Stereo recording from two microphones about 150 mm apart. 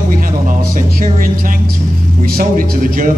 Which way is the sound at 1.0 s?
65° right (ahead or behind).